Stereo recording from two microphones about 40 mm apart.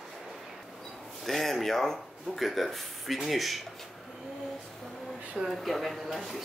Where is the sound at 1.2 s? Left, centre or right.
Centre.